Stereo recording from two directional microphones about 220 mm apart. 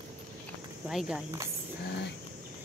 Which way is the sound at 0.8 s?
Centre (ahead or behind).